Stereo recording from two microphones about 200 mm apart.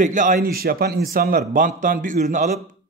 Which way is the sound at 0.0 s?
40° right (ahead or behind).